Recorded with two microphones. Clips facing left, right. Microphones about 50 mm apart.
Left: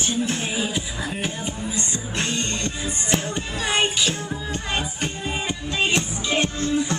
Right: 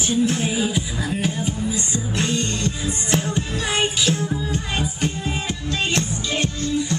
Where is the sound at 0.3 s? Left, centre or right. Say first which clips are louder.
Right 3 dB; centre.